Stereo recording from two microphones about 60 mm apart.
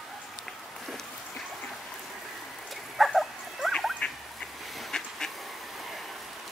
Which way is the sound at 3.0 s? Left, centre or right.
Centre.